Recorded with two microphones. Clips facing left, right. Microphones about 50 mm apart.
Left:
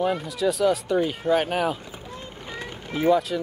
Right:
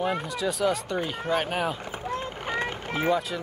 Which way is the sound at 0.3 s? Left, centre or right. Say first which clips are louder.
Left 4 dB; centre.